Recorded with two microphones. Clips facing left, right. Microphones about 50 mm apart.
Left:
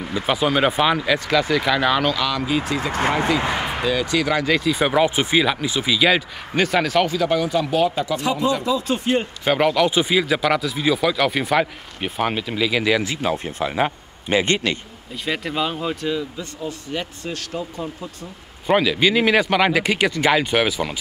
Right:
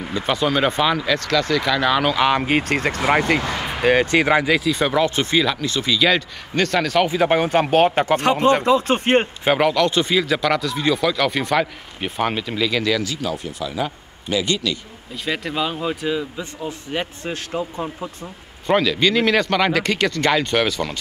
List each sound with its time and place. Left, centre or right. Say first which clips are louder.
0.0 s speech: even; centre
2.1 s speech: right 5 dB; right
2.4 s speech: right 3 dB; right
3.3 s speech: left 1 dB; left
3.8 s speech: right 7 dB; right
4.5 s speech: even; centre
7.2 s speech: right 3 dB; right
9.6 s speech: left 2 dB; centre; by 14.8 s left
15.2 s speech: even; centre
16.6 s speech: right 1 dB; right
18.7 s speech: even; centre